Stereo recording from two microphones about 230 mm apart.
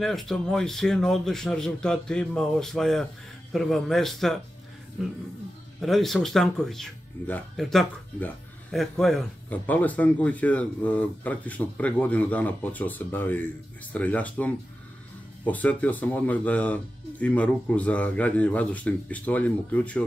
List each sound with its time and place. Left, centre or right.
0.0 s a man's voice: centre